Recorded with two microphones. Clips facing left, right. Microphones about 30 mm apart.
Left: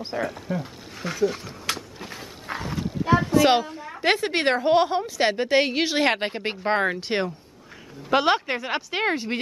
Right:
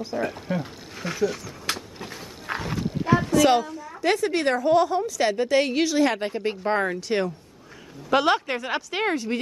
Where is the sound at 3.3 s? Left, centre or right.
Left.